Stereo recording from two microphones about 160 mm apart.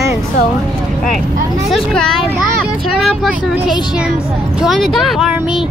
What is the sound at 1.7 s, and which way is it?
Speech, 5° left (ahead or behind).